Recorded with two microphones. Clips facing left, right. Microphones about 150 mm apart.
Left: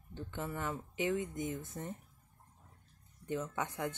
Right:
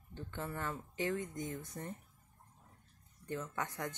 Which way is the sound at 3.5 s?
10° left (ahead or behind).